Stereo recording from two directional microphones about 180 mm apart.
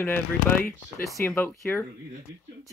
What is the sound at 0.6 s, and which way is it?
Speech, 55° left (ahead or behind).